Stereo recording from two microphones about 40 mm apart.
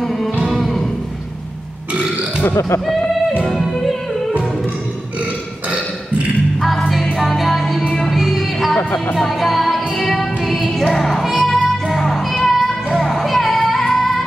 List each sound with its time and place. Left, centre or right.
0.2 s music: centre
3.4 s music: centre
6.9 s music: centre
10.9 s music: centre
12.4 s a sound: centre
13.2 s music: centre